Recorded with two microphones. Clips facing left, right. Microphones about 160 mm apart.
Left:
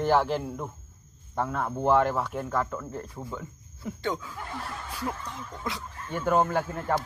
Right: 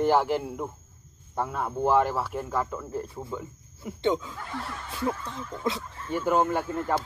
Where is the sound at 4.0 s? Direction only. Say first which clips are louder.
Right 6 dB; 20° right (ahead or behind).